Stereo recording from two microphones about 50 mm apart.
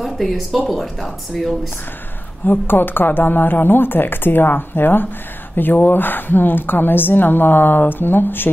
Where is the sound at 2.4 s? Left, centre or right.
Left.